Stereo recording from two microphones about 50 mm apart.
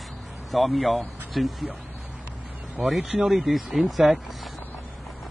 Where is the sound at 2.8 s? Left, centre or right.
Centre.